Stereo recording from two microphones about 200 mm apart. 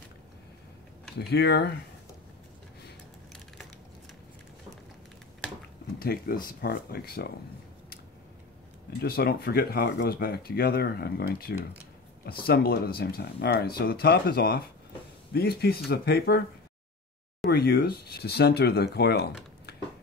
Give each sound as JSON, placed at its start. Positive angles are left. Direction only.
{"t": 1.1, "sound": "speech", "side_deg": 55}
{"t": 5.9, "sound": "speech", "side_deg": 45}
{"t": 9.0, "sound": "speech", "side_deg": 50}
{"t": 17.5, "sound": "speech", "side_deg": 50}